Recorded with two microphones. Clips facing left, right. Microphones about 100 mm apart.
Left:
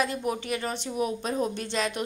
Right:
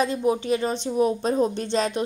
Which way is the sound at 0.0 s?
25° right (ahead or behind).